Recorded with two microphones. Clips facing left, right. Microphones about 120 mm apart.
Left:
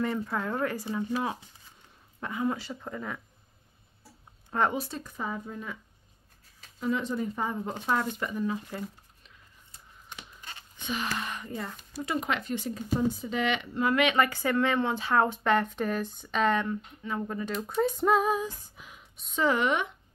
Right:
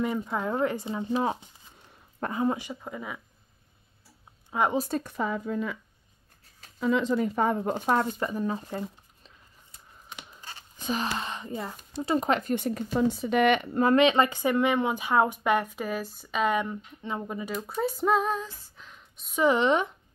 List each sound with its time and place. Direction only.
0.0 s speech: 15° right (ahead or behind)
2.2 s speech: 50° right (ahead or behind)
2.5 s speech: 15° right (ahead or behind)
4.5 s speech: 10° right (ahead or behind)
4.7 s a woman's voice: 50° right (ahead or behind)
7.7 s speech: 35° right (ahead or behind)
10.8 s a sound: 40° right (ahead or behind)
11.1 s speech: 25° right (ahead or behind); by 12.8 s 55° right (ahead or behind)
12.9 s speech: 75° right (ahead or behind); by 13.9 s 45° right (ahead or behind)
13.9 s speech: 25° right (ahead or behind)
17.6 s a sound: centre (ahead or behind)
19.3 s speech: 20° right (ahead or behind)